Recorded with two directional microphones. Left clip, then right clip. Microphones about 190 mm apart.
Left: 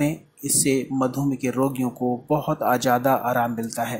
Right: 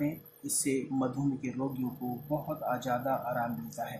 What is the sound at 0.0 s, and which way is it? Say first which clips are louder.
Speech: left 10 dB; 30° left (ahead or behind).